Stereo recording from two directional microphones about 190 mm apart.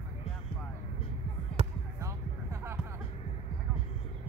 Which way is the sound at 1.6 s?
30° right (ahead or behind).